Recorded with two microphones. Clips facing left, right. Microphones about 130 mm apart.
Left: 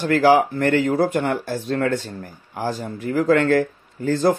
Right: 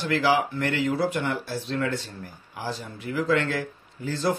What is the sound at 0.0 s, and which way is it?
Speech, 50° left (ahead or behind).